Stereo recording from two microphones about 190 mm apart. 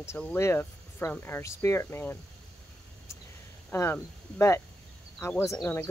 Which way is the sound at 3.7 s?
10° left (ahead or behind).